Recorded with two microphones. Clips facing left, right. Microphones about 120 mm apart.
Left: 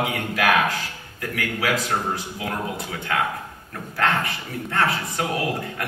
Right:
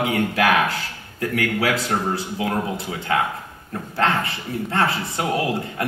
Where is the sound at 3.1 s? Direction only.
30° right (ahead or behind).